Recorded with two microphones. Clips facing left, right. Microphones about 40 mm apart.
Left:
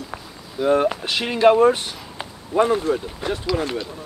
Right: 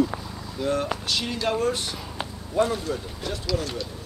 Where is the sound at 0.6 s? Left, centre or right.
Left.